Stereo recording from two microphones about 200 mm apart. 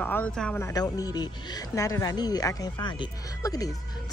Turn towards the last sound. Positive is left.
turn(degrees=20)  # may be behind; listen again after turning